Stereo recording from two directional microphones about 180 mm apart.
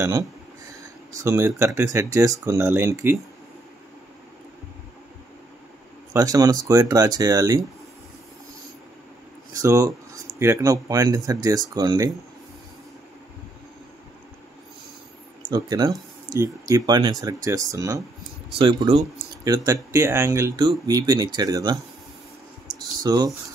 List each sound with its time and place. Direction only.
0.0 s speech: 20° right (ahead or behind)
6.1 s speech: 20° right (ahead or behind)
9.5 s speech: 20° right (ahead or behind)
15.5 s speech: 20° right (ahead or behind)
23.0 s speech: 20° right (ahead or behind)